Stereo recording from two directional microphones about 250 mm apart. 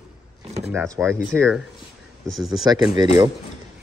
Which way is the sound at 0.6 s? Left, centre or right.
Centre.